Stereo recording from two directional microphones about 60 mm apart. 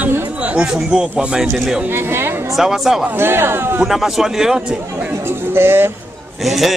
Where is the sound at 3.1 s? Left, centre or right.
Right.